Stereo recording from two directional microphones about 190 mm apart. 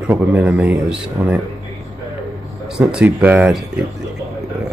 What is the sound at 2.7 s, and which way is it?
Speech, 5° right (ahead or behind).